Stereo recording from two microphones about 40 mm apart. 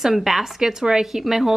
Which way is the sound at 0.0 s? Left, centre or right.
Centre.